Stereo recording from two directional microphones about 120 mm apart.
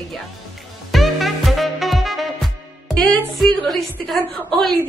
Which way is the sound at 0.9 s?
Centre (ahead or behind).